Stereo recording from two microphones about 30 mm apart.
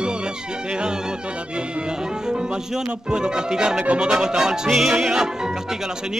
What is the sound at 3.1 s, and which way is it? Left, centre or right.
Music, right.